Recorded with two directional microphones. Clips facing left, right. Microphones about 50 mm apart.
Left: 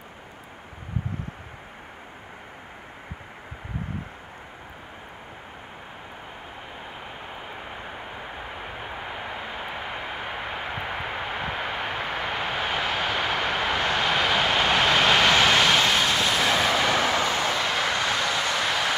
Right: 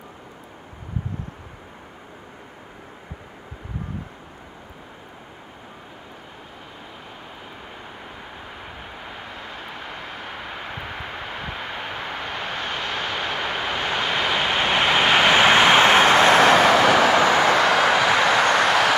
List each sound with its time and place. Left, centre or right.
8.7 s vehicle: centre
14.6 s vehicle: centre; by 18.9 s right